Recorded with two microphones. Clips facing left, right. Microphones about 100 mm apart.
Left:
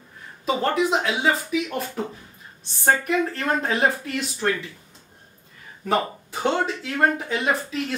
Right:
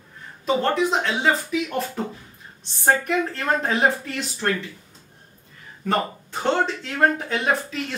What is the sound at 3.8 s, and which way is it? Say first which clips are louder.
Speech: right 1 dB; 5° left (ahead or behind).